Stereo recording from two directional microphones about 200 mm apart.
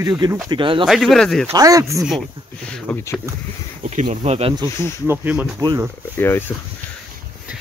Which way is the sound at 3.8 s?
35° right (ahead or behind).